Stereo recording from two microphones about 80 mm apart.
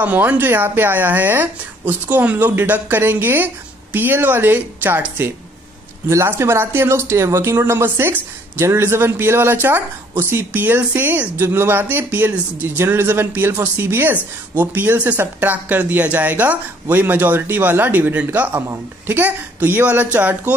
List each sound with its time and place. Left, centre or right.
0.0 s speech: right
6.0 s speech: right
6.3 s speech: right